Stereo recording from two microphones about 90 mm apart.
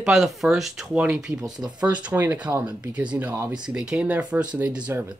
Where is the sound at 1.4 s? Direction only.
50° right (ahead or behind).